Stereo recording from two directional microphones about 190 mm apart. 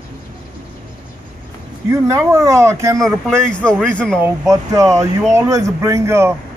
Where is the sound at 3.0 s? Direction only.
Centre (ahead or behind).